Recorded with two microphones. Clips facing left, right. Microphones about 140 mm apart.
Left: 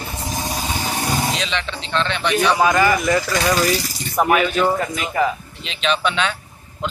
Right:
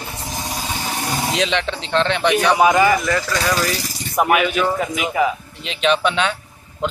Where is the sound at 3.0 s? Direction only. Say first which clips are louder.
Left 2 dB; 15° left (ahead or behind).